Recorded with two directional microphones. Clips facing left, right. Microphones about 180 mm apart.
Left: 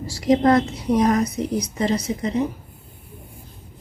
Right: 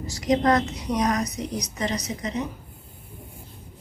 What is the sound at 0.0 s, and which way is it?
A woman's voice, 30° left (ahead or behind).